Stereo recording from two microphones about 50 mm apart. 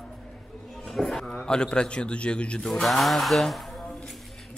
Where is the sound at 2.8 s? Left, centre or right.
Centre.